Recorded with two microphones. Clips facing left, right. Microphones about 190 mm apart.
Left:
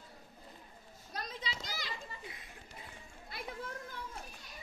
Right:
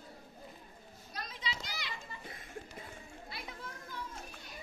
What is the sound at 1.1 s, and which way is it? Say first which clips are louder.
Children playing: left 1 dB; 40° left (ahead or behind).